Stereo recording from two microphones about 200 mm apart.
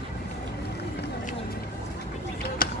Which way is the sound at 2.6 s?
45° left (ahead or behind).